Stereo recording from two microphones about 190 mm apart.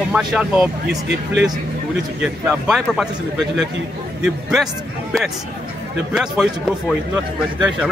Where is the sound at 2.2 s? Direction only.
5° right (ahead or behind).